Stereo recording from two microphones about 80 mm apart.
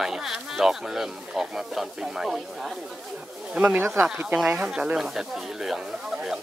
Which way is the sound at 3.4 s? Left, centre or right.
Centre.